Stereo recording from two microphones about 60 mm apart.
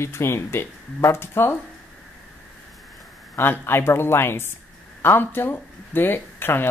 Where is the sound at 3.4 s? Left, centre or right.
Left.